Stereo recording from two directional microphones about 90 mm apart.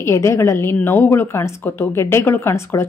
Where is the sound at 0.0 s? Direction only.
35° left (ahead or behind).